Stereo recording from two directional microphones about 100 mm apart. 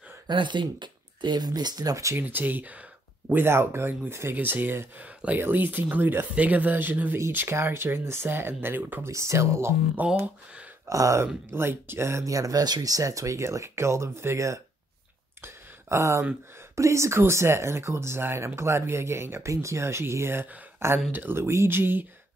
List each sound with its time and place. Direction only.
0.3 s speech: 50° right (ahead or behind); by 2.1 s 35° right (ahead or behind)
2.1 s speech: 15° right (ahead or behind)
10.2 s speech: 15° right (ahead or behind)
10.9 s speech: 30° right (ahead or behind)
15.4 s a sound: 30° right (ahead or behind)
16.7 s speech: 30° right (ahead or behind)